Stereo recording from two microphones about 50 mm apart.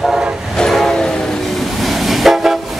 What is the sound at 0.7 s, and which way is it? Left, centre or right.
Train, centre.